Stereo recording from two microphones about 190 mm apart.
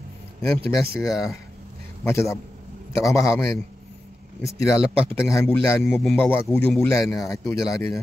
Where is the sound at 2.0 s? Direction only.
15° left (ahead or behind).